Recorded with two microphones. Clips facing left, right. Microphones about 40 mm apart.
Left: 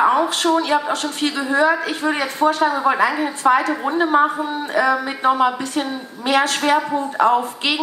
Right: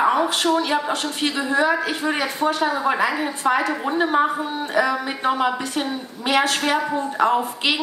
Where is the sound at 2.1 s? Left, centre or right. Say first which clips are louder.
Left 3 dB; centre.